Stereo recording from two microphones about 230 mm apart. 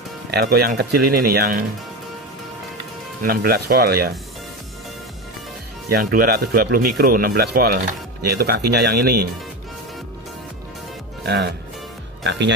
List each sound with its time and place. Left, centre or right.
0.3 s speech: right
3.2 s speech: right
5.9 s speech: right
11.2 s speech: right